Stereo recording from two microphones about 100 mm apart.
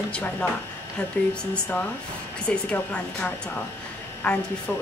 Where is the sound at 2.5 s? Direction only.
10° left (ahead or behind).